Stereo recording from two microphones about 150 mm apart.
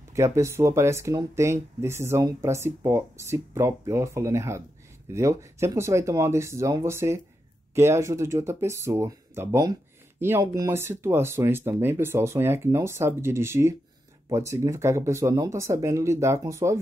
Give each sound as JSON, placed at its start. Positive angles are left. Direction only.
{"t": 0.1, "sound": "speech", "side_deg": -20}